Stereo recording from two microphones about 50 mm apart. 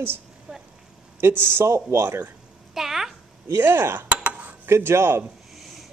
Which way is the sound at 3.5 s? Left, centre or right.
Right.